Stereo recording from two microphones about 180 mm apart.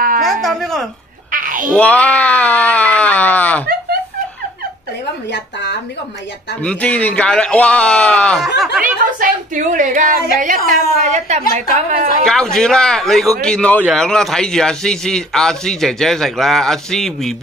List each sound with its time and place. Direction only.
0.2 s speech: centre (ahead or behind)
1.3 s music: 50° right (ahead or behind)
1.7 s speech: 5° left (ahead or behind)
6.6 s speech: 5° left (ahead or behind)
8.8 s a woman's voice: 45° right (ahead or behind)
12.3 s a man's voice: 5° left (ahead or behind)